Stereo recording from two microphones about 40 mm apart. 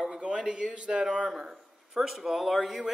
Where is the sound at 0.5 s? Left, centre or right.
Right.